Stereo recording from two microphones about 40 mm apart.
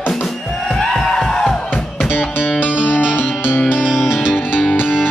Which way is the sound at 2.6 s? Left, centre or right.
Right.